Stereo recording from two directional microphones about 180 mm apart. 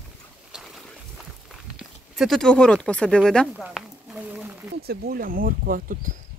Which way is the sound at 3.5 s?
5° right (ahead or behind).